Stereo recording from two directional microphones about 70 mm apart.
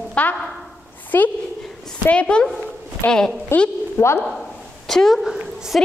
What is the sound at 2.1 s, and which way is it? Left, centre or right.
Speech, centre.